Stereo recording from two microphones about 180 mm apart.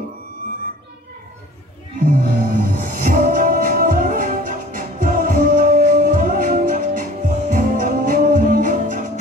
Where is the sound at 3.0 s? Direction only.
50° right (ahead or behind).